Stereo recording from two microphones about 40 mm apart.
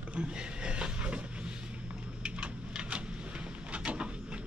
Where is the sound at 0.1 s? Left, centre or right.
Right.